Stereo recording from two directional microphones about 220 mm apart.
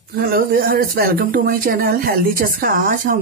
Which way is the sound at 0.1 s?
45° right (ahead or behind).